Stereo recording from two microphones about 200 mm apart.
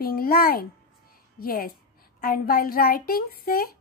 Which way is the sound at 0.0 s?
45° left (ahead or behind).